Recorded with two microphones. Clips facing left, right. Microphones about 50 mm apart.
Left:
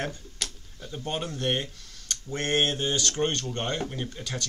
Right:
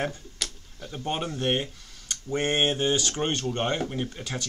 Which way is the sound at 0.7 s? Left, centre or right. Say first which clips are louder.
Right 2 dB; centre.